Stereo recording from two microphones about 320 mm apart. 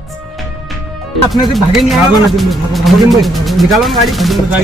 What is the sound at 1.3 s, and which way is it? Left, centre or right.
Speech, centre.